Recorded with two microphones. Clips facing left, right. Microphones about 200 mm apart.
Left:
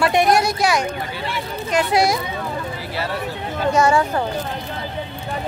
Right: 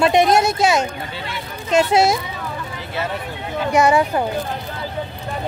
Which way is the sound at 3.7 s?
15° right (ahead or behind).